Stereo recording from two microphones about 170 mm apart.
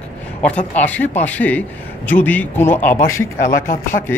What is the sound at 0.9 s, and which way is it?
A man's voice, 10° left (ahead or behind).